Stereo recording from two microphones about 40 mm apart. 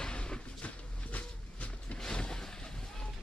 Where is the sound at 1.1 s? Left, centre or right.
Left.